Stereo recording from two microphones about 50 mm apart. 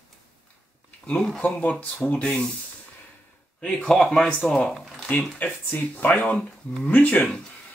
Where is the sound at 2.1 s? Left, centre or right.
Centre.